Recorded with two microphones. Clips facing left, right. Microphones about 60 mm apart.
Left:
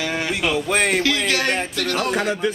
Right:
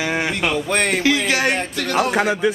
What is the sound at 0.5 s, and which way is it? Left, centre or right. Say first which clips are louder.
Speech: left 2 dB; centre.